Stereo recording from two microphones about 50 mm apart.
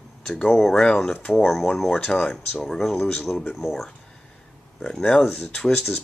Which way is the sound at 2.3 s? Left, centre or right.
Left.